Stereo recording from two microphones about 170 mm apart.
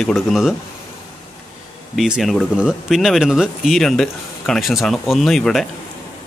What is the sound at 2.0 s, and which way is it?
Speech, centre (ahead or behind).